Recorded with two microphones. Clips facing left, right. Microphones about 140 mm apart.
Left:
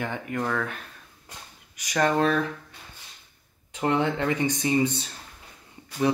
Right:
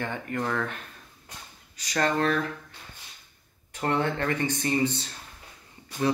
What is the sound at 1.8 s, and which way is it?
Speech, 15° left (ahead or behind).